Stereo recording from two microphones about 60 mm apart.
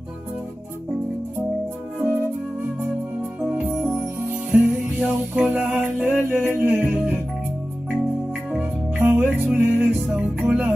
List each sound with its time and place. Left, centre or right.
3.4 s music: right
4.5 s jingle bell: right
5.7 s music: right
9.0 s music: right
10.4 s music: centre